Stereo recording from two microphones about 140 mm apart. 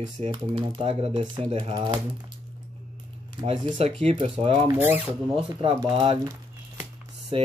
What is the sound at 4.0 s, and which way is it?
Speech, 45° right (ahead or behind).